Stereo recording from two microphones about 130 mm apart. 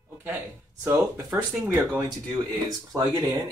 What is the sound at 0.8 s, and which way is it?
Speech, 20° right (ahead or behind).